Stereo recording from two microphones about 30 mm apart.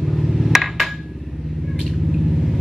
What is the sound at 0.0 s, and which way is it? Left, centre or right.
Hammer, centre.